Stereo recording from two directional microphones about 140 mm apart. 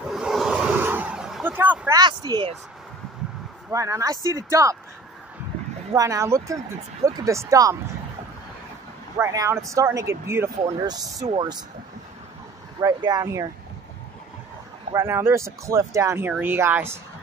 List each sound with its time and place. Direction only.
0.0 s vehicle: 5° right (ahead or behind)
2.0 s speech: 30° right (ahead or behind)
3.7 s speech: 25° right (ahead or behind)
5.9 s speech: 25° right (ahead or behind)
9.2 s speech: 20° right (ahead or behind)
12.8 s speech: 25° right (ahead or behind)
15.0 s speech: 20° right (ahead or behind)